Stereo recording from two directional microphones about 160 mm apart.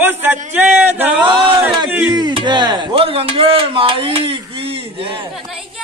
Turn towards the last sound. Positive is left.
turn(degrees=0)  # may be behind; listen again after turning